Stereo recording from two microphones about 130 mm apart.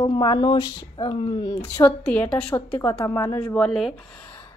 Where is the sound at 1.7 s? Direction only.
15° left (ahead or behind).